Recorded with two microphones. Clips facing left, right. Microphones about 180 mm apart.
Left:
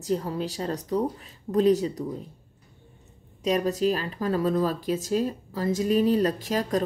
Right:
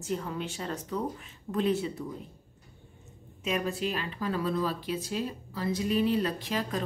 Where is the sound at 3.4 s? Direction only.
40° left (ahead or behind).